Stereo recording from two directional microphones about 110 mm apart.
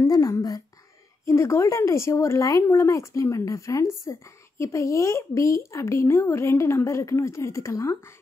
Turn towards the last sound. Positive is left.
turn(degrees=30)  # may be behind; listen again after turning